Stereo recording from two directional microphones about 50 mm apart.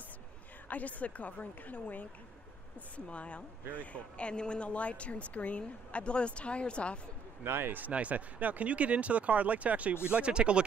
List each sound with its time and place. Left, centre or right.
0.7 s a woman's voice: left
3.1 s speech: left
7.4 s speech: right
7.8 s speech: right